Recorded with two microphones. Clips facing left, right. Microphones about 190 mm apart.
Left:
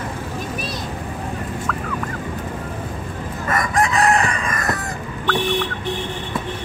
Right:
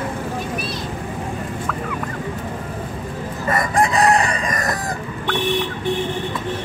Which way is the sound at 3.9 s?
35° right (ahead or behind).